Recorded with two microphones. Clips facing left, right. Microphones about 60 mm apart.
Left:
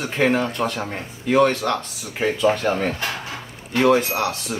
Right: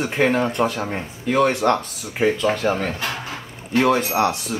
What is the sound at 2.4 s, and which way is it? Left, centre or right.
Speech, centre.